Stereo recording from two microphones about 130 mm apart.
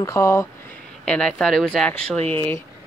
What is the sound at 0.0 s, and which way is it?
Speech, 20° left (ahead or behind).